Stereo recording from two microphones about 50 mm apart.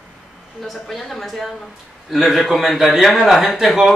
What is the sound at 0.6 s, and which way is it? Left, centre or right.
A man's voice, centre.